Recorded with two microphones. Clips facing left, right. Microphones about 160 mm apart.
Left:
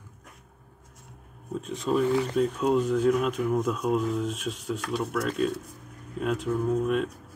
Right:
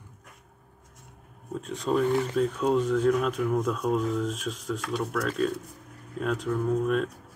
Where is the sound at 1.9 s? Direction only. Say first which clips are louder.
Even; centre (ahead or behind).